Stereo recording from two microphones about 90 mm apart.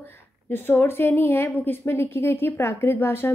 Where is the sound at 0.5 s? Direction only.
25° left (ahead or behind).